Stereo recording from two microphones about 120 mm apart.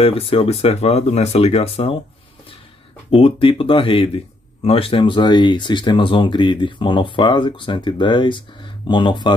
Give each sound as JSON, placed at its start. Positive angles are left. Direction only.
{"t": 0.0, "sound": "speech", "side_deg": 55}
{"t": 3.1, "sound": "speech", "side_deg": 55}